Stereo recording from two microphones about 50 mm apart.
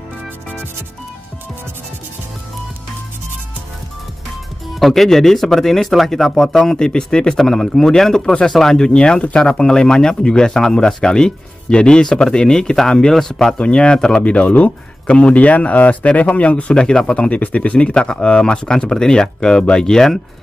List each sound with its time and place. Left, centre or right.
4.7 s speech: centre
13.6 s speech: left
14.3 s speech: left; by 20.2 s centre